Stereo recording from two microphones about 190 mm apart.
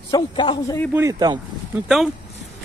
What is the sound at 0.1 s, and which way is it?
Speech, 20° left (ahead or behind).